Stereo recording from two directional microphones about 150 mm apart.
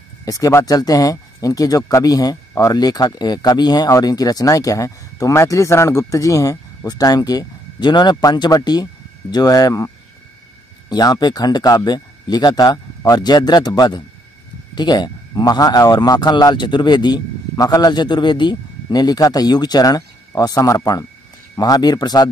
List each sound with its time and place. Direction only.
0.2 s speech: 25° left (ahead or behind)
10.9 s speech: 25° left (ahead or behind)